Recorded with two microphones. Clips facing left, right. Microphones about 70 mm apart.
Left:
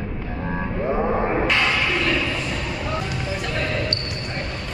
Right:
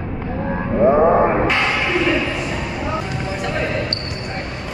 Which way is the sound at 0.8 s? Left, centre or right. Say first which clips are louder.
Right 10 dB; right.